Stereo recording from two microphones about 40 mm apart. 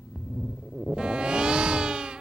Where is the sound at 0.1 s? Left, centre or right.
Centre.